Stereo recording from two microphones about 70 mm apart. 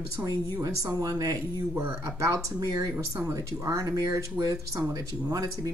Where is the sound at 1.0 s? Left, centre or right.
Right.